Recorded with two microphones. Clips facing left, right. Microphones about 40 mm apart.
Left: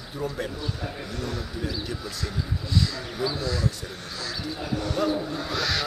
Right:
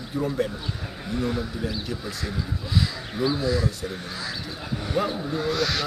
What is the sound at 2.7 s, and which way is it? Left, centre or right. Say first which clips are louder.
Speech: right 1 dB; centre.